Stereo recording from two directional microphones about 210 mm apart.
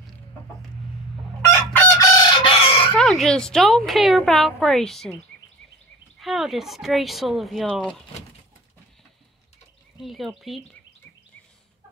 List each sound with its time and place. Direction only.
1.5 s chicken: 10° left (ahead or behind)
2.9 s speech: centre (ahead or behind)
6.1 s speech: centre (ahead or behind)
9.9 s speech: centre (ahead or behind)